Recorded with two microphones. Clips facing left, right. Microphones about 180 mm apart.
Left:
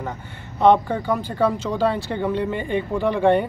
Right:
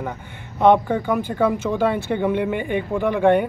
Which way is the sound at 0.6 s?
15° right (ahead or behind).